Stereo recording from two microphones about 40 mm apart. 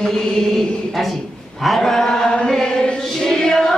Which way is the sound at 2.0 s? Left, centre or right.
Centre.